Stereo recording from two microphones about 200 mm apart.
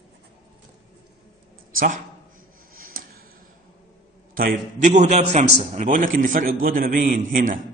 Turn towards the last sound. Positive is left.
turn(degrees=-45)  # may be behind; listen again after turning